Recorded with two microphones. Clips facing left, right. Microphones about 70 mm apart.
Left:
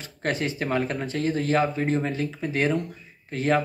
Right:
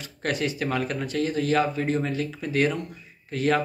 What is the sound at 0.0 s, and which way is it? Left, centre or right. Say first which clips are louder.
Speech: even; left.